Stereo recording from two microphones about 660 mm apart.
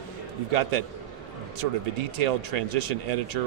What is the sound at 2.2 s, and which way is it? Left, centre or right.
Speech, right.